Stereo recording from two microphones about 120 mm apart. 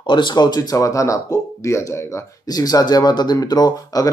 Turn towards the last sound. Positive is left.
turn(degrees=30)  # may be behind; listen again after turning